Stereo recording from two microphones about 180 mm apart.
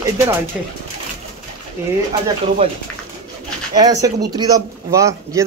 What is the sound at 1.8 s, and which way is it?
Speech, 15° right (ahead or behind).